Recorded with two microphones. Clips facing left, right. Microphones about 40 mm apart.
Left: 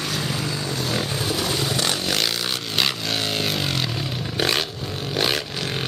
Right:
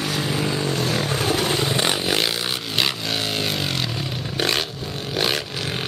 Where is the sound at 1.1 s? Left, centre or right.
Right.